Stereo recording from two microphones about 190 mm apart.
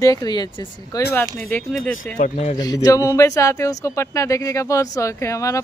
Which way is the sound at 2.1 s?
35° left (ahead or behind).